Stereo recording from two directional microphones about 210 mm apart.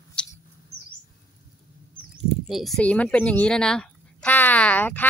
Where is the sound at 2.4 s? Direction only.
Centre (ahead or behind).